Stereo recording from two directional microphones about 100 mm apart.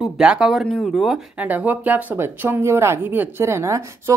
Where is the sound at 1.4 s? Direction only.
15° right (ahead or behind).